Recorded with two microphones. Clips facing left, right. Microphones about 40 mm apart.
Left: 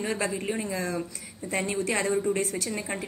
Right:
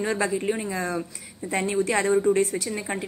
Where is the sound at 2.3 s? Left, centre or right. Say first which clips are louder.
Right 5 dB; right.